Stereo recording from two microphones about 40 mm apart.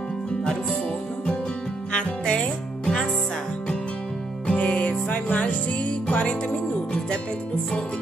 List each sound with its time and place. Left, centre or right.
1.9 s music: left
2.8 s music: centre
4.5 s music: left